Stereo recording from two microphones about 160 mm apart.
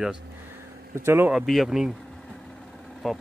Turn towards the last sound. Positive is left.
turn(degrees=0)  # may be behind; listen again after turning